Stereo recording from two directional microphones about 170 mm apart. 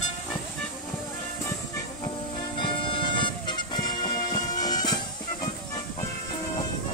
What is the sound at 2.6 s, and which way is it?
Music, 30° left (ahead or behind).